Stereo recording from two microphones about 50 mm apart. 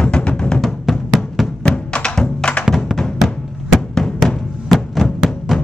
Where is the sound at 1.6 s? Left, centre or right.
Centre.